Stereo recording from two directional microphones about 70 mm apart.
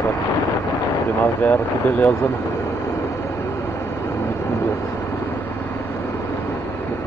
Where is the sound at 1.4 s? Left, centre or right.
Left.